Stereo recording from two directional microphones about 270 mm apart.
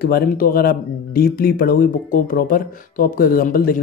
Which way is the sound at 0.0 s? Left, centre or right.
Left.